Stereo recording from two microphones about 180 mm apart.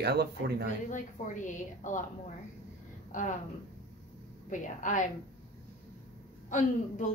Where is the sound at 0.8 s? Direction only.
45° left (ahead or behind).